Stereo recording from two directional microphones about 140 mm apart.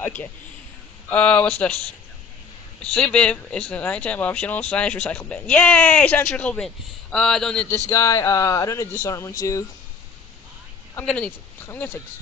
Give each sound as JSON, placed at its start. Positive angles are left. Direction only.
{"t": 0.0, "sound": "speech", "side_deg": 10}
{"t": 2.8, "sound": "speech", "side_deg": 10}
{"t": 7.9, "sound": "speech", "side_deg": 20}
{"t": 11.1, "sound": "speech", "side_deg": 10}